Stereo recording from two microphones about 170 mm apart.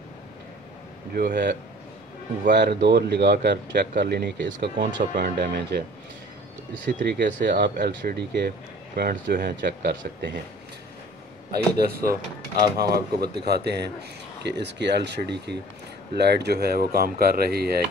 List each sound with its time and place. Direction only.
1.1 s speech: 55° right (ahead or behind)
2.5 s speech: 85° right
4.7 s speech: 60° right (ahead or behind); by 5.9 s 80° right
7.0 s speech: 90° right
7.7 s speech: 65° right (ahead or behind)
11.8 s speech: 60° right (ahead or behind)
14.4 s speech: 90° right; by 17.8 s 65° right (ahead or behind)